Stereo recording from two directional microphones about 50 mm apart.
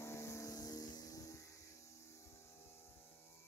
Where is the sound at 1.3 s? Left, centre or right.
Left.